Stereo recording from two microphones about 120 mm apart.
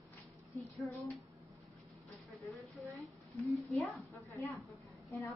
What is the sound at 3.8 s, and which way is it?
Speech, centre (ahead or behind).